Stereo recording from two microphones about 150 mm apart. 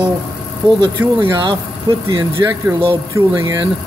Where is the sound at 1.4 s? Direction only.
35° right (ahead or behind).